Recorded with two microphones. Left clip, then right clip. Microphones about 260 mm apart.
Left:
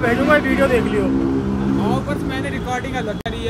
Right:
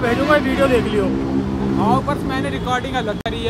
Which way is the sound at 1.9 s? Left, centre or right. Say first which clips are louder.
Right 4 dB; centre.